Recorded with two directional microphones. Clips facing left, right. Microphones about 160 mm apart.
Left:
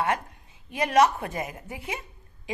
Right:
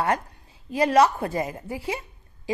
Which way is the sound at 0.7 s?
30° right (ahead or behind).